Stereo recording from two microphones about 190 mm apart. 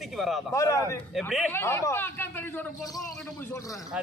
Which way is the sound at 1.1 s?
Centre (ahead or behind).